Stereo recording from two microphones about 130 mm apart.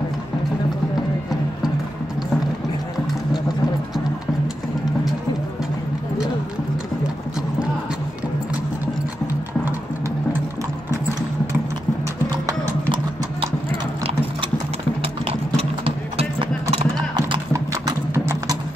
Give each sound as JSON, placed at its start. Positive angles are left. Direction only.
{"t": 15.5, "sound": "clip-clop", "side_deg": -50}
{"t": 16.9, "sound": "clip-clop", "side_deg": -30}